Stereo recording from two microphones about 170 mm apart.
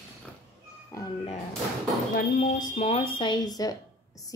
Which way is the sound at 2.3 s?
50° left (ahead or behind).